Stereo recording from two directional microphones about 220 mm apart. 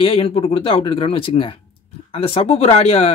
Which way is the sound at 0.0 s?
25° left (ahead or behind).